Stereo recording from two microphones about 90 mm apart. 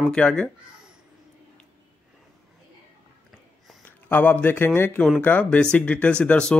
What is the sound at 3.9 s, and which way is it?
A man's voice, 20° left (ahead or behind).